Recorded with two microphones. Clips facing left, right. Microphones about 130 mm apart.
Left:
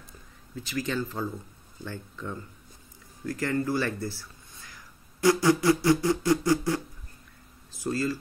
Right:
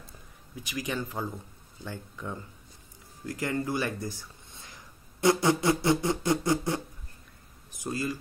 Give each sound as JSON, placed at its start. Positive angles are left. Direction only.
{"t": 0.6, "sound": "speech", "side_deg": -15}